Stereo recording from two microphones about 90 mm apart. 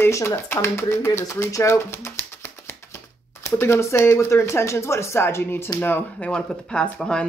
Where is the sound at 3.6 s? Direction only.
30° left (ahead or behind).